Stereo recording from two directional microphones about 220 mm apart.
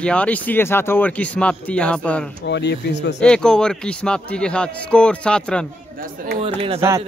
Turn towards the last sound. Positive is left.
turn(degrees=-25)  # may be behind; listen again after turning